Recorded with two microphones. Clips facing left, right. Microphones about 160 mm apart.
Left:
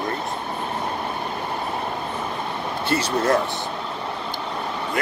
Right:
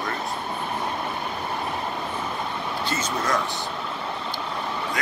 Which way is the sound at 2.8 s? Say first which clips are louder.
Left 8 dB; 65° left (ahead or behind).